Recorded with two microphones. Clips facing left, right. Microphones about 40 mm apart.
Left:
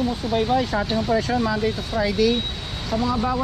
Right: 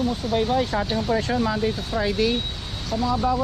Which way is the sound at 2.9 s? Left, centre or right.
Centre.